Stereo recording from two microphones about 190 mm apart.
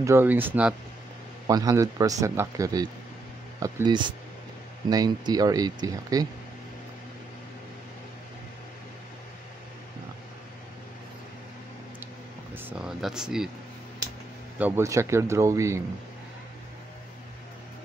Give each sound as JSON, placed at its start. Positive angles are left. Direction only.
{"t": 0.0, "sound": "speech", "side_deg": -15}
{"t": 1.5, "sound": "speech", "side_deg": -20}
{"t": 12.5, "sound": "speech", "side_deg": -5}
{"t": 14.6, "sound": "speech", "side_deg": -15}